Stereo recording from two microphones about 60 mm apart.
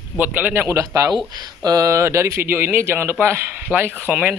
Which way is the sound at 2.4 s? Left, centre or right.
Right.